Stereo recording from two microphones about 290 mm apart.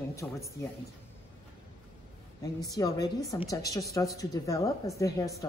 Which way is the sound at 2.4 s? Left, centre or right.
Centre.